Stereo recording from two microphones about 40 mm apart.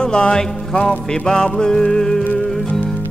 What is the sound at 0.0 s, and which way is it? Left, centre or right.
Music, left.